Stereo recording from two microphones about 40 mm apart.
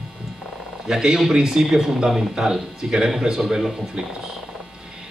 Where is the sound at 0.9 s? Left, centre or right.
Centre.